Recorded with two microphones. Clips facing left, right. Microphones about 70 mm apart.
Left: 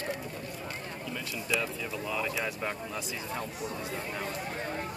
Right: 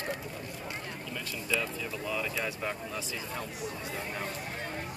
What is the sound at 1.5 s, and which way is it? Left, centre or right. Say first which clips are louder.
Speech: even; centre.